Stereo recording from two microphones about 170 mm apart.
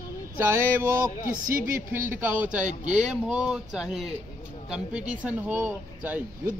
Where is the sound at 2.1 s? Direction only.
10° right (ahead or behind).